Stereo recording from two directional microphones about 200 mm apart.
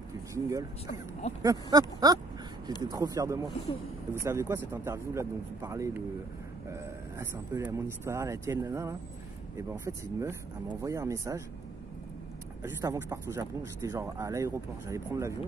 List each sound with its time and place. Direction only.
0.3 s speech: 15° right (ahead or behind)
1.4 s a sound: 20° right (ahead or behind)
2.9 s speech: 15° right (ahead or behind)
12.6 s speech: 15° right (ahead or behind)